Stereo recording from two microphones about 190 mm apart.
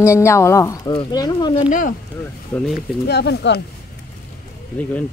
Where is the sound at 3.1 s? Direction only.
60° left (ahead or behind).